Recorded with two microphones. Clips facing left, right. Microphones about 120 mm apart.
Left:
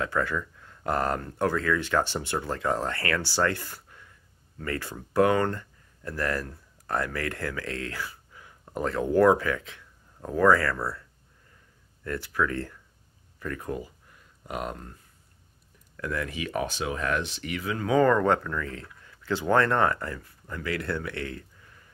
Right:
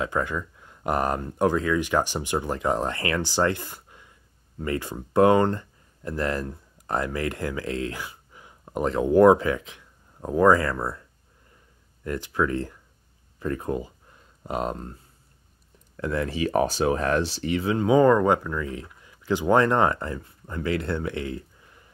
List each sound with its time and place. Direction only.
0.0 s speech: 20° right (ahead or behind)
16.0 s speech: 30° right (ahead or behind)